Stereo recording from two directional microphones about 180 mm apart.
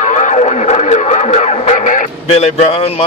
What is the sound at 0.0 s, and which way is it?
Radio, 40° left (ahead or behind).